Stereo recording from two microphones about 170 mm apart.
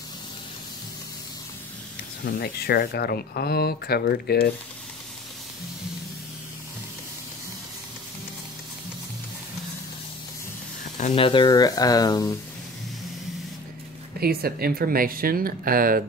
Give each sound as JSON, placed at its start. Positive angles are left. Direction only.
{"t": 2.2, "sound": "speech", "side_deg": 65}
{"t": 11.1, "sound": "speech", "side_deg": 30}
{"t": 14.2, "sound": "speech", "side_deg": -65}